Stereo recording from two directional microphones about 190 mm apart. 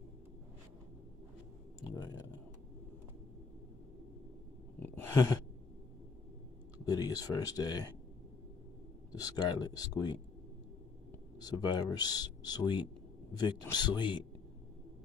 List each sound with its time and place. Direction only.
4.7 s a sound: 10° left (ahead or behind)
6.9 s speech: 20° left (ahead or behind)
9.1 s speech: 20° left (ahead or behind)
11.3 s speech: 20° left (ahead or behind)